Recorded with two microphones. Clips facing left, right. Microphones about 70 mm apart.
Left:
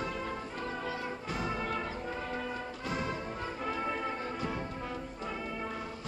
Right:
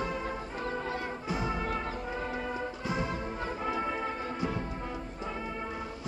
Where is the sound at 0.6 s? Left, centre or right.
Right.